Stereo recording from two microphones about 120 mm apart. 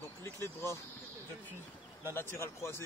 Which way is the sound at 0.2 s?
25° left (ahead or behind).